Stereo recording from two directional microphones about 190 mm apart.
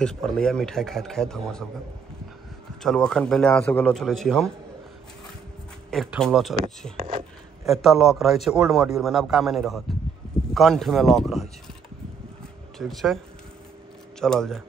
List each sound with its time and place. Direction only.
0.0 s a man's voice: 5° left (ahead or behind)
2.8 s a man's voice: 5° left (ahead or behind)
5.9 s a man's voice: centre (ahead or behind)
7.0 s speech: 30° right (ahead or behind)
7.6 s a man's voice: centre (ahead or behind)
12.7 s a man's voice: centre (ahead or behind)
14.2 s a man's voice: 5° left (ahead or behind)